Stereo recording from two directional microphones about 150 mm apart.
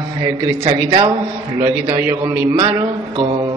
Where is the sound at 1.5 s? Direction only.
20° right (ahead or behind).